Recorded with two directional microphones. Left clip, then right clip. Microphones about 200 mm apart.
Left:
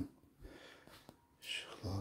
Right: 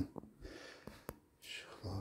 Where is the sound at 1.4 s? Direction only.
20° left (ahead or behind).